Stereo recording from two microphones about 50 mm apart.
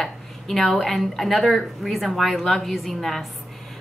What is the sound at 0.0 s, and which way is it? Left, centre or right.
A woman's voice, centre.